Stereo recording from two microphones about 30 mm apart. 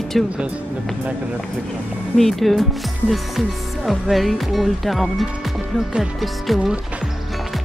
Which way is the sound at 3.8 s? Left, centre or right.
Centre.